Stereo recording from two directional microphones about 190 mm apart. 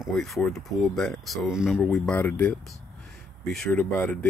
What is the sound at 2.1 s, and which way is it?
Speech, 10° left (ahead or behind).